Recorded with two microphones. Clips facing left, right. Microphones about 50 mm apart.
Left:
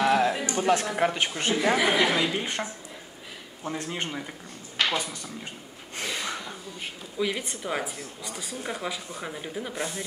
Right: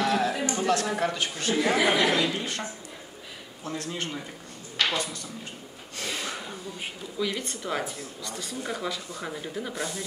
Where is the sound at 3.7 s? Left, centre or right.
Left.